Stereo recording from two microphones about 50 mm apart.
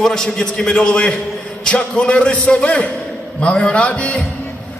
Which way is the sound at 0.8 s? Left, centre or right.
Centre.